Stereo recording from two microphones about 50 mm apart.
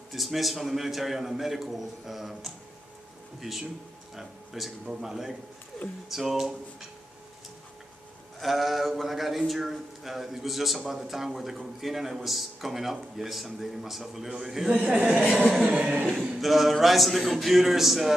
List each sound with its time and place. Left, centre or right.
0.1 s a man's voice: centre
8.4 s a man's voice: centre
14.8 s speech: right
15.5 s a man's voice: centre